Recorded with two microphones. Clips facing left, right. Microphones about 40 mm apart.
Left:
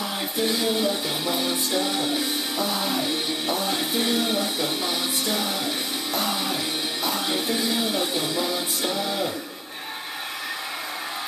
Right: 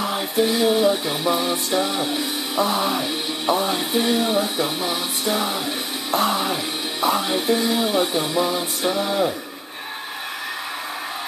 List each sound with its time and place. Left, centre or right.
0.4 s music: centre
2.5 s music: right
3.7 s music: centre
4.3 s speech: centre
6.1 s music: right
7.2 s music: centre